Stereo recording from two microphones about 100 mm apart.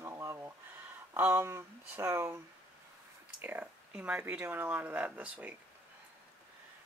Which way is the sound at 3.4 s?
20° right (ahead or behind).